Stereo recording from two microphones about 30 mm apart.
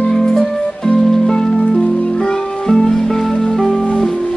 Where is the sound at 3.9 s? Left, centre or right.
Left.